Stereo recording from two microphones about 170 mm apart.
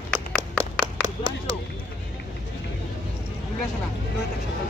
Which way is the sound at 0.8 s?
25° right (ahead or behind).